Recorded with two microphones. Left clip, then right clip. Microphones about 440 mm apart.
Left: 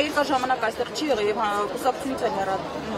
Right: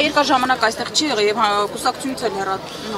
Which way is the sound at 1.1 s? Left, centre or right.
Right.